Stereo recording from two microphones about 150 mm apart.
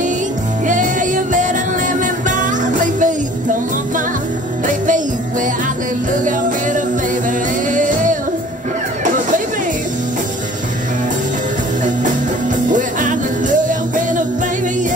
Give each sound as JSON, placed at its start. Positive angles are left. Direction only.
{"t": 0.7, "sound": "music", "side_deg": -60}
{"t": 7.2, "sound": "music", "side_deg": -60}
{"t": 12.7, "sound": "music", "side_deg": -60}